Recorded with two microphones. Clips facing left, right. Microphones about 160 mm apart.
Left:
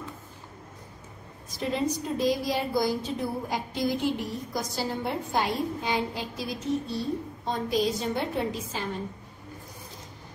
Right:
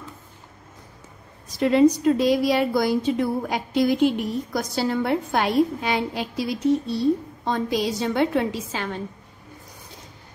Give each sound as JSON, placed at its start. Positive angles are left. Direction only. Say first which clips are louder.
{"t": 1.5, "sound": "a woman's voice", "louder": "right 11 dB", "side_deg": -85}